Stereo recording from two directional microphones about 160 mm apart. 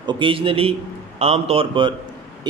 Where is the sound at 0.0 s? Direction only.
30° right (ahead or behind).